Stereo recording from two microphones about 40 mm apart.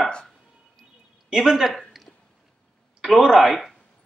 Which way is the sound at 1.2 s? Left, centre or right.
Centre.